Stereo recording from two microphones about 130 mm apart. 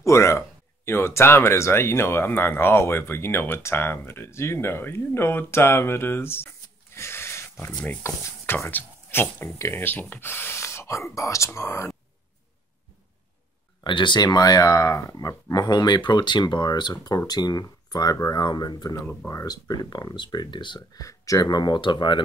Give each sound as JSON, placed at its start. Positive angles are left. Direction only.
{"t": 0.0, "sound": "speech", "side_deg": 20}
{"t": 13.8, "sound": "speech", "side_deg": 35}